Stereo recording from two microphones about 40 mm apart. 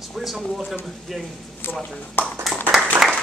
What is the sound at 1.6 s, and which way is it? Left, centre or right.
Speech, left.